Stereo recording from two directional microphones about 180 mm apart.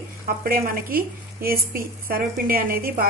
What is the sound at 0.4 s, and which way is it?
A woman's voice, 55° right (ahead or behind).